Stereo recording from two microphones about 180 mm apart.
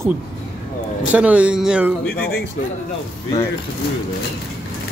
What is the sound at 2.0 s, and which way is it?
Speech, 60° left (ahead or behind).